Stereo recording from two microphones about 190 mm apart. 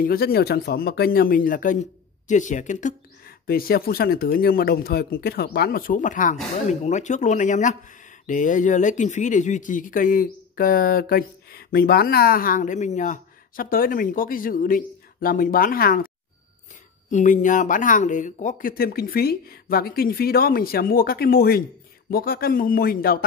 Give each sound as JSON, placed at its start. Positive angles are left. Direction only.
{"t": 0.0, "sound": "speech", "side_deg": 50}
{"t": 17.1, "sound": "speech", "side_deg": 40}